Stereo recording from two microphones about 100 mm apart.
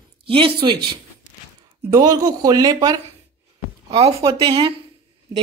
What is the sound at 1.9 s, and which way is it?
Speech, 40° right (ahead or behind).